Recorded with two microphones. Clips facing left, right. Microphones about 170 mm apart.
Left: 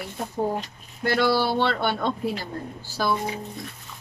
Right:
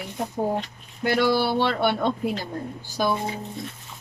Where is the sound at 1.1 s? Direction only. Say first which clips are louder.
Right 1 dB; 15° right (ahead or behind).